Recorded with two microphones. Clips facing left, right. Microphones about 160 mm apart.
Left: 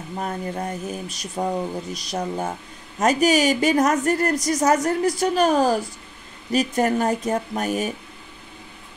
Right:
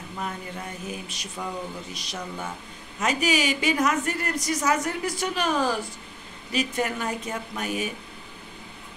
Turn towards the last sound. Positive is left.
turn(degrees=45)  # may be behind; listen again after turning